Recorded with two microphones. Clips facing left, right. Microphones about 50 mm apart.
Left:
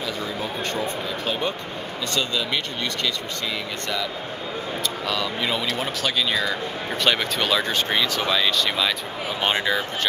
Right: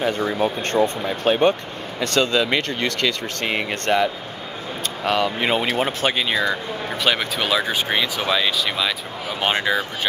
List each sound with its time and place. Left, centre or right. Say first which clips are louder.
0.0 s speech: right 8 dB; right
6.3 s speech: right 3 dB; centre